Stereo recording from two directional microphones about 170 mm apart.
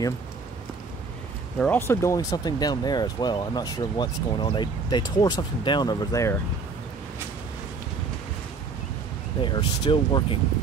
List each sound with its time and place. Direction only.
1.6 s speech: 10° left (ahead or behind)
9.4 s speech: 30° left (ahead or behind)